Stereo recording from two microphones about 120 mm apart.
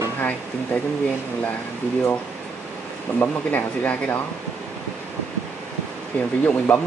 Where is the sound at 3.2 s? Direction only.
15° left (ahead or behind).